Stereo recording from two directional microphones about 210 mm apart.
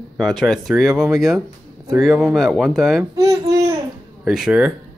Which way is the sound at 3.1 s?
15° right (ahead or behind).